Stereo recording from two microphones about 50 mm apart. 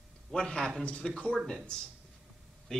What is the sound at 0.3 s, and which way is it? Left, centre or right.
A man's voice, centre.